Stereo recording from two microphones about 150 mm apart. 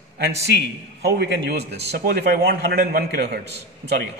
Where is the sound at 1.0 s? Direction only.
90° right.